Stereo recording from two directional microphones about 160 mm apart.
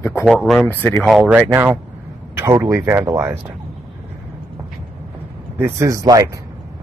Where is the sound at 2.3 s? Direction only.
15° right (ahead or behind).